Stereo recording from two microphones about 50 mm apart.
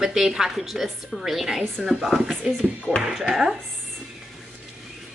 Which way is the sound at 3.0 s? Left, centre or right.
Centre.